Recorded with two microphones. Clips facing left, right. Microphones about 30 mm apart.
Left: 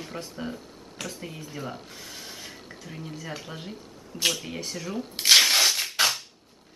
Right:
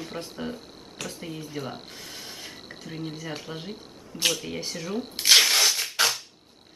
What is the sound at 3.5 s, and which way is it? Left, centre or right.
Speech, right.